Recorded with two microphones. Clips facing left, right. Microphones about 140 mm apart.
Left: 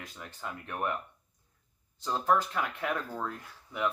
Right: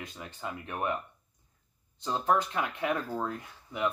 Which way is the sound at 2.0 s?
15° right (ahead or behind).